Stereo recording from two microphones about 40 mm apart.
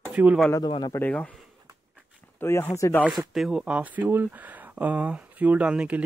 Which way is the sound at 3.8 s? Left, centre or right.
Right.